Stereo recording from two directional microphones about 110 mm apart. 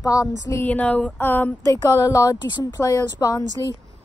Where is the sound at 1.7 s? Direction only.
30° left (ahead or behind).